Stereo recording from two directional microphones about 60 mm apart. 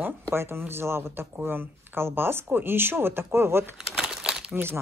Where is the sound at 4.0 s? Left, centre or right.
Centre.